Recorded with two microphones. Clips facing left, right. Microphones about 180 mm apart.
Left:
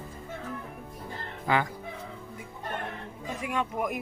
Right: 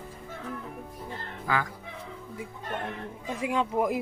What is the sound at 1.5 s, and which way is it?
Fowl, 20° left (ahead or behind).